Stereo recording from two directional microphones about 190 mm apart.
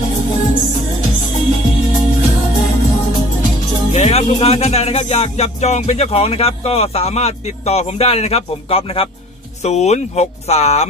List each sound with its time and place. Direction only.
3.9 s music: 35° left (ahead or behind)